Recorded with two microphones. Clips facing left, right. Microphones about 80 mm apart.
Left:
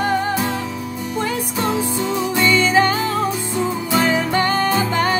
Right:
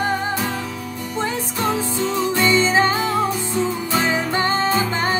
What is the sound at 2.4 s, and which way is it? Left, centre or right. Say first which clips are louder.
Music: left 2 dB; right.